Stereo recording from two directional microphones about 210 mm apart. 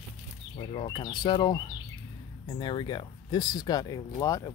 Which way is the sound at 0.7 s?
25° left (ahead or behind).